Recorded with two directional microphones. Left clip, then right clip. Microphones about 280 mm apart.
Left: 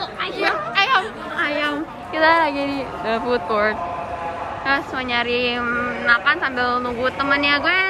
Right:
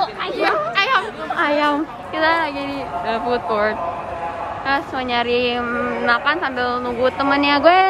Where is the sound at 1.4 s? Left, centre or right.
Centre.